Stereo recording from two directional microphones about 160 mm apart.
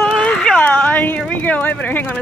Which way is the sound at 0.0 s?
5° left (ahead or behind).